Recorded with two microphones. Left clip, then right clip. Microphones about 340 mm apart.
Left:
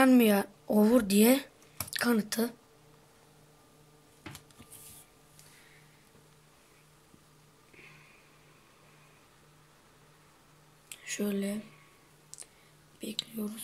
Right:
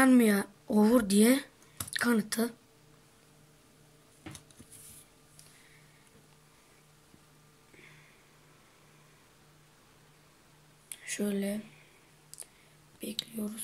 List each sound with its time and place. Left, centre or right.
0.0 s speech: centre
10.9 s speech: centre
13.0 s whispering: centre